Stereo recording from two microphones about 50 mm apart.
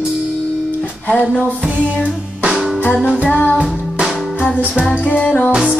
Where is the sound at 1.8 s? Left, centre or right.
Right.